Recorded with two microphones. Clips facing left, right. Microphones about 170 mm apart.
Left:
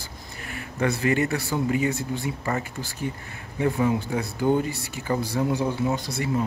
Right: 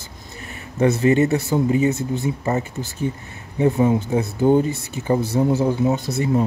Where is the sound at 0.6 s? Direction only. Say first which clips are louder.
Right 7 dB; 20° right (ahead or behind).